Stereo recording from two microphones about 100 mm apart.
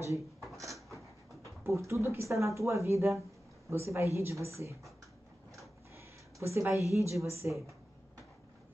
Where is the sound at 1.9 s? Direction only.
25° right (ahead or behind).